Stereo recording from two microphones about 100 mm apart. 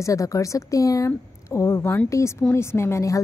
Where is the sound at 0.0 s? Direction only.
35° left (ahead or behind).